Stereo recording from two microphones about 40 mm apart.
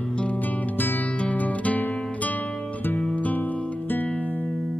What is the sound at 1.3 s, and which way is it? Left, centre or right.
Music, left.